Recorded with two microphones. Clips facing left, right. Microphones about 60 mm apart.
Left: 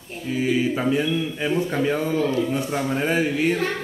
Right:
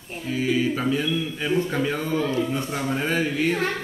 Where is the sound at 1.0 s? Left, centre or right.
Centre.